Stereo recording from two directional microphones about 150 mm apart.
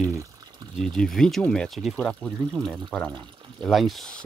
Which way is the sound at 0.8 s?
5° left (ahead or behind).